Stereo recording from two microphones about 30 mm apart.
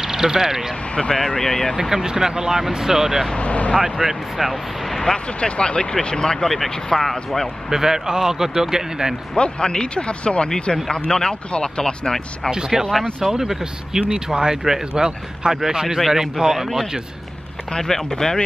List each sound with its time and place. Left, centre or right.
0.0 s speech: centre
0.9 s speech: left
1.9 s speech: centre
3.3 s speech: left
4.0 s a man's voice: centre
5.0 s speech: left
6.0 s speech: left
6.3 s speech: centre
7.7 s a man's voice: centre
9.4 s speech: left
11.1 s speech: left
12.4 s a man's voice: right
16.6 s speech: centre
17.6 s speech: left